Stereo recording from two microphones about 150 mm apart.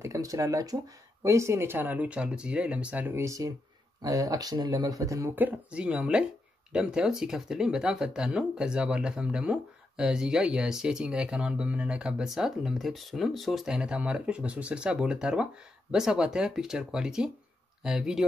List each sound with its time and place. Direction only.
0.0 s speech: 20° right (ahead or behind); by 18.2 s 5° right (ahead or behind)